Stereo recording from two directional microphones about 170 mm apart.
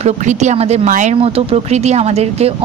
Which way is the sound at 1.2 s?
35° right (ahead or behind).